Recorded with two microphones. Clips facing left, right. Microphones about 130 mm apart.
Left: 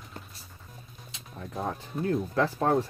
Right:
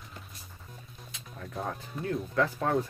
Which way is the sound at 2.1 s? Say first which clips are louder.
Left 2 dB; 35° left (ahead or behind).